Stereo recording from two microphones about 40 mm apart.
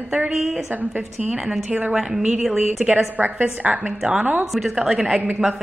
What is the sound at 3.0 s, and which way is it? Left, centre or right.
A woman's voice, right.